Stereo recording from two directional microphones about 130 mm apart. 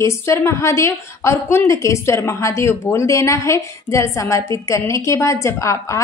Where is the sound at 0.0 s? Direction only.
20° left (ahead or behind).